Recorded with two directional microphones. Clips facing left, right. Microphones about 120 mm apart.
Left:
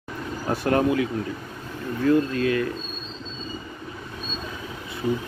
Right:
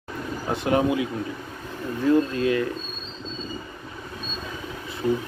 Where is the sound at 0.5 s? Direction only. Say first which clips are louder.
Left 1 dB; 20° right (ahead or behind).